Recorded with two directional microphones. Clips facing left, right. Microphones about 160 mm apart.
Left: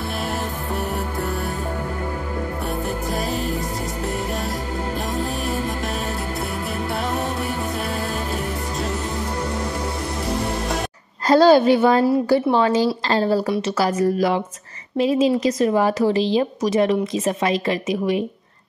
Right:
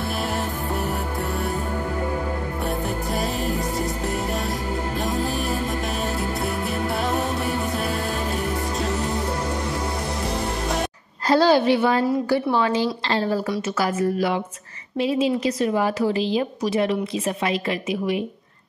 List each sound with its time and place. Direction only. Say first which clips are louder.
2.6 s music: even; centre (ahead or behind)
5.0 s music: right 1 dB; centre (ahead or behind)
7.4 s music: right 1 dB; centre (ahead or behind)
11.2 s a woman's voice: left 4 dB; 45° left (ahead or behind)